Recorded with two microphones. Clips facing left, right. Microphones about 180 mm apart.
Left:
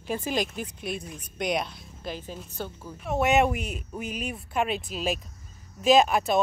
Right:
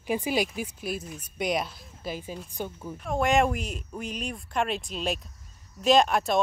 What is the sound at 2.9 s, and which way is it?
Speech, 5° left (ahead or behind).